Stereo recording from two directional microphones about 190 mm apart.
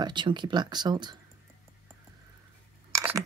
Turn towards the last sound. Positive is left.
turn(degrees=-15)  # may be behind; listen again after turning